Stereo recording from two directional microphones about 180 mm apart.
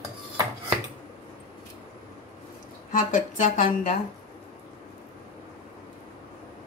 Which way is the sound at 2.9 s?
45° left (ahead or behind).